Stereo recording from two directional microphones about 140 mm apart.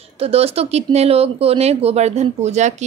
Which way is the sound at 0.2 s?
45° right (ahead or behind).